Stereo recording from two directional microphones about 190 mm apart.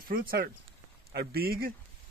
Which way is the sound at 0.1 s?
50° right (ahead or behind).